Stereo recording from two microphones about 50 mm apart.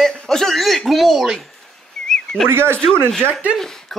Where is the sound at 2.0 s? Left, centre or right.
Centre.